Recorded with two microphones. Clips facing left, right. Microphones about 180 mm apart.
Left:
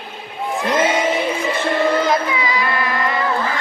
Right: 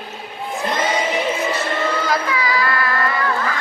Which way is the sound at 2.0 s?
20° left (ahead or behind).